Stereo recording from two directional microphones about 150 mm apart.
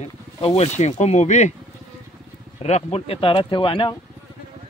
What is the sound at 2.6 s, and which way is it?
Speech, 45° left (ahead or behind).